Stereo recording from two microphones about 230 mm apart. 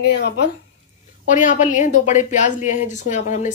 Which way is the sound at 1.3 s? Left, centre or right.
Left.